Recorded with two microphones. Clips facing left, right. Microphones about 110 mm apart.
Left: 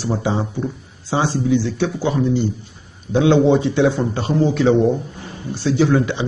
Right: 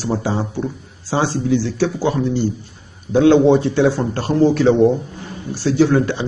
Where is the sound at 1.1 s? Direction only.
15° left (ahead or behind).